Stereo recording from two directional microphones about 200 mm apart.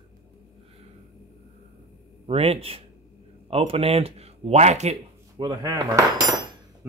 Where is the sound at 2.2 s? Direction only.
30° right (ahead or behind).